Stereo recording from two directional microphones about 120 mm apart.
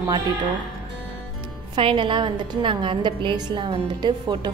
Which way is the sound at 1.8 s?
45° right (ahead or behind).